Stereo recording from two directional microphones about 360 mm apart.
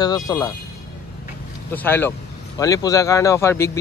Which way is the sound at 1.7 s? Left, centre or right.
Centre.